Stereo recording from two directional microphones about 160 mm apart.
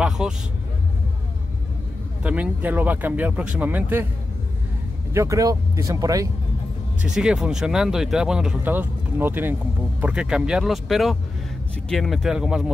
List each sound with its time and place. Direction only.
0.2 s speech: 5° right (ahead or behind)
2.2 s speech: 10° right (ahead or behind)
5.1 s speech: 20° right (ahead or behind)
7.0 s speech: 5° right (ahead or behind)